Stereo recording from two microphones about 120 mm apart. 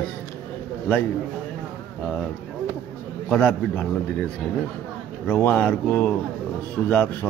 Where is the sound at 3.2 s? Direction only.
10° left (ahead or behind).